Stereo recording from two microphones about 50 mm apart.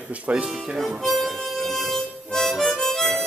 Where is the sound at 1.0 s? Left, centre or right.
Centre.